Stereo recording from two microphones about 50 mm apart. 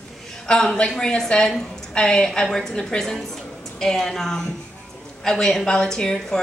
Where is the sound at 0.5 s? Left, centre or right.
Centre.